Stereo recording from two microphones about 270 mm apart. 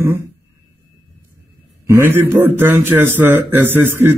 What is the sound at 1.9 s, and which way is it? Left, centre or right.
Speech, centre.